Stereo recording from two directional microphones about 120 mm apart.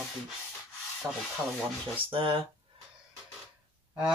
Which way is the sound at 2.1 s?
45° right (ahead or behind).